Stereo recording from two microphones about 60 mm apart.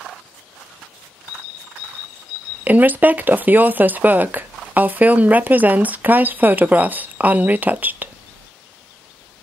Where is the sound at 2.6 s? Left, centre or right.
Right.